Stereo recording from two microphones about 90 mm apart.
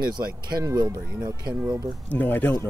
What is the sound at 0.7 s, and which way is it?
Speech, 40° right (ahead or behind).